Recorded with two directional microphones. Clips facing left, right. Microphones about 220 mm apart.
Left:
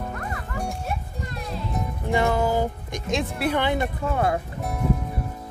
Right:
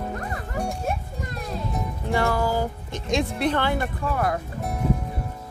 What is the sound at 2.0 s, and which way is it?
Music, 20° left (ahead or behind).